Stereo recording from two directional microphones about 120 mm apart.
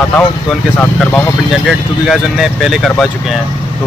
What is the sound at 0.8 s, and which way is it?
Speech, 15° left (ahead or behind).